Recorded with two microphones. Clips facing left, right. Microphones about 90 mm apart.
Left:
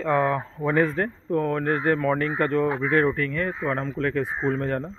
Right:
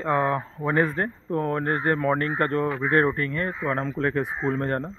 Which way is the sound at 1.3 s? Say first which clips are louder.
Left 2 dB; 30° right (ahead or behind).